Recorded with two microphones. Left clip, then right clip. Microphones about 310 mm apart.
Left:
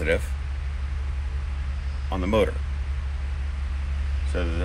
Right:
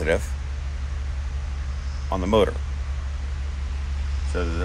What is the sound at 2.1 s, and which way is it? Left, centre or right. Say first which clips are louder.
Speech: right 3 dB; right.